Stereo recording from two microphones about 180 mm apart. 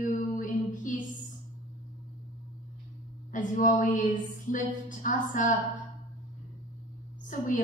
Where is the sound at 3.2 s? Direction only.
45° left (ahead or behind).